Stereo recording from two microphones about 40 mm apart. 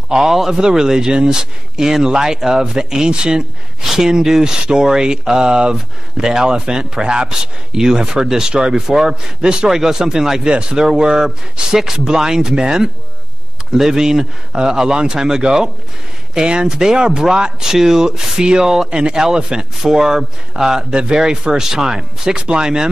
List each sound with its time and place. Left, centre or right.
0.1 s speech: centre
3.8 s speech: centre
9.7 s speech: centre
18.9 s speech: right